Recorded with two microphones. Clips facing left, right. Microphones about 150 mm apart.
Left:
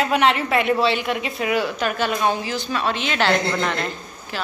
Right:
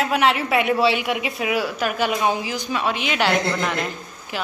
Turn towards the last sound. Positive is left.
turn(degrees=-10)  # may be behind; listen again after turning